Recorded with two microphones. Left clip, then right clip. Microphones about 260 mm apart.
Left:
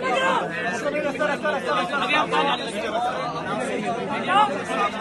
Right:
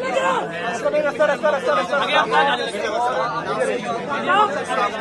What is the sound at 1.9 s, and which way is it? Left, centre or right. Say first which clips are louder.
Speech: right 4 dB; right.